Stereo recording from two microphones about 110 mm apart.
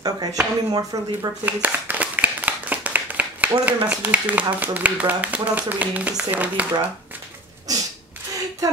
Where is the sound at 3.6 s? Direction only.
15° right (ahead or behind).